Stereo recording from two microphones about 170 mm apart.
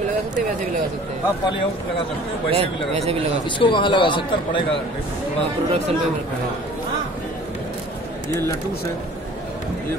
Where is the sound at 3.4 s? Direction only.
30° left (ahead or behind).